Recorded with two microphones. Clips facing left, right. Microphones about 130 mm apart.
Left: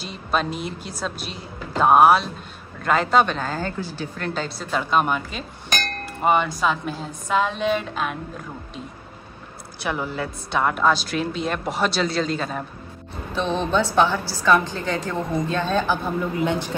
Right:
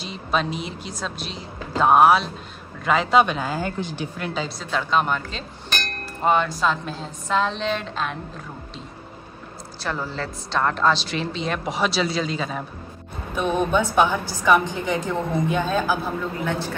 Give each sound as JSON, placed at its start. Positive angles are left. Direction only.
{"t": 0.0, "sound": "a woman's voice", "side_deg": 0}
{"t": 4.3, "sound": "a woman's voice", "side_deg": 0}
{"t": 9.8, "sound": "a woman's voice", "side_deg": 15}
{"t": 13.3, "sound": "speech", "side_deg": -15}
{"t": 16.3, "sound": "a woman's voice", "side_deg": 20}